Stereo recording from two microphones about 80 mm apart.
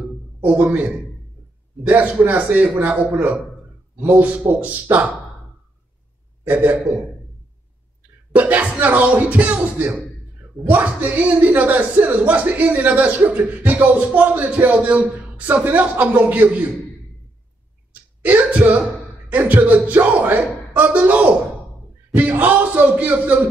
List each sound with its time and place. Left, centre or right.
0.4 s a man's voice: right
6.4 s a man's voice: right
8.4 s a man's voice: centre
18.2 s speech: centre
22.1 s a sound: right